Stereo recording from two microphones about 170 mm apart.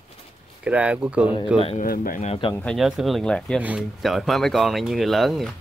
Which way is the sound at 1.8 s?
55° left (ahead or behind).